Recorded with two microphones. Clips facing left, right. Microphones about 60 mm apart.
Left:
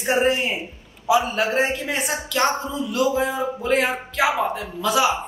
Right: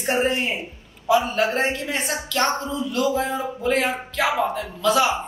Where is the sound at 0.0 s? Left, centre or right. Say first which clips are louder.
Left 2 dB; centre.